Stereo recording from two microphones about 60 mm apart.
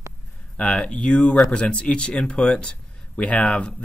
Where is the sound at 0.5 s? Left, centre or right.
Centre.